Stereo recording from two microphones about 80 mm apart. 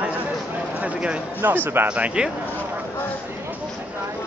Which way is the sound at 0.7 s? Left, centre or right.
Centre.